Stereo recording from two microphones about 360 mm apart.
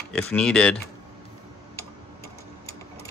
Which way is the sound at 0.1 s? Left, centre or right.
Centre.